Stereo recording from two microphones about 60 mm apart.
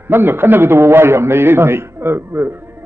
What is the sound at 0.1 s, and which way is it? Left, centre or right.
A man's voice, right.